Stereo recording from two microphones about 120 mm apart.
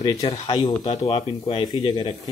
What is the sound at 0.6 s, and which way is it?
Speech, 40° left (ahead or behind).